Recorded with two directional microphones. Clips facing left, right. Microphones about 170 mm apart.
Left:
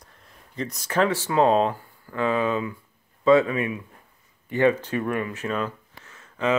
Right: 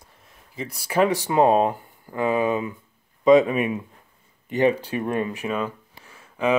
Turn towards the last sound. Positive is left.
turn(degrees=-10)  # may be behind; listen again after turning